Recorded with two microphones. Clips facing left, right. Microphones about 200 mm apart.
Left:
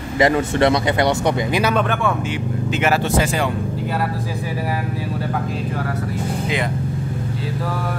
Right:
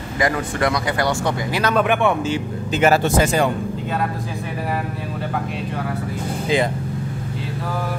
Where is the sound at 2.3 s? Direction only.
40° right (ahead or behind).